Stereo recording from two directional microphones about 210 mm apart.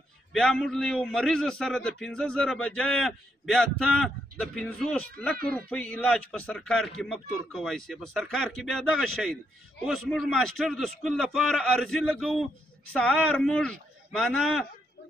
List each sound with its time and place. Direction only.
0.3 s a man's voice: centre (ahead or behind)
5.4 s speech: 45° right (ahead or behind)
5.7 s a man's voice: 5° left (ahead or behind)